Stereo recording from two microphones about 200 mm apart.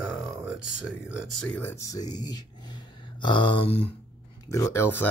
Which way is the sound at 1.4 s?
10° left (ahead or behind).